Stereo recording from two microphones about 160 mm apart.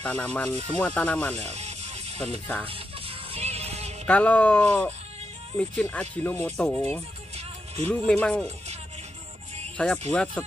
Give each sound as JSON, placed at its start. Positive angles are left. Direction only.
{"t": 0.0, "sound": "speech", "side_deg": 10}
{"t": 1.3, "sound": "music", "side_deg": -45}
{"t": 2.4, "sound": "speech", "side_deg": 10}
{"t": 2.7, "sound": "music", "side_deg": -35}
{"t": 4.0, "sound": "speech", "side_deg": 10}
{"t": 7.3, "sound": "music", "side_deg": -40}
{"t": 7.9, "sound": "speech", "side_deg": 5}
{"t": 9.8, "sound": "speech", "side_deg": 5}